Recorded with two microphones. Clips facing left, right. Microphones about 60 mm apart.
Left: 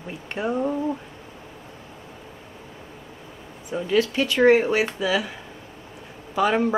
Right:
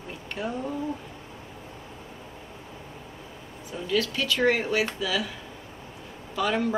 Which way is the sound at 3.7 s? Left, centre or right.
Left.